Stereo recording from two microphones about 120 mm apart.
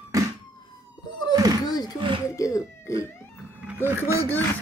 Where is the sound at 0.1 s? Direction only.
25° right (ahead or behind).